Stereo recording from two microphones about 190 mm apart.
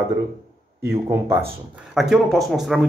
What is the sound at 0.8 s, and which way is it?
Speech, 15° right (ahead or behind).